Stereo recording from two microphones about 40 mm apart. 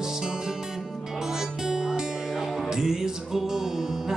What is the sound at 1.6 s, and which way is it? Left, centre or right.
Music, centre.